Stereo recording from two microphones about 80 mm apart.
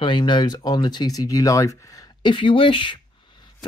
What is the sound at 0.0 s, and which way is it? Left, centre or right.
Speech, left.